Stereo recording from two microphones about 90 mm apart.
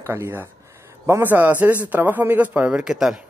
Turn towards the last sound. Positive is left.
turn(degrees=-5)  # may be behind; listen again after turning